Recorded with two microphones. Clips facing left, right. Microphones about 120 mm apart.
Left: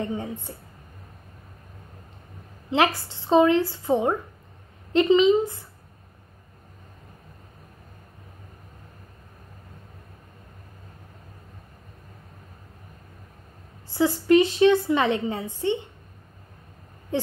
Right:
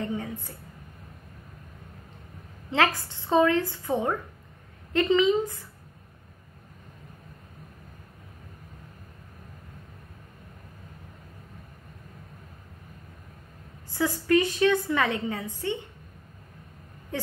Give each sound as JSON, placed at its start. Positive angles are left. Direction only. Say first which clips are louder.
{"t": 0.0, "sound": "a woman's voice", "louder": "left 2 dB", "side_deg": 20}
{"t": 2.7, "sound": "a woman's voice", "louder": "left 3 dB", "side_deg": 15}
{"t": 13.9, "sound": "a woman's voice", "louder": "left 5 dB", "side_deg": 20}
{"t": 17.1, "sound": "speech", "louder": "left 6 dB", "side_deg": 20}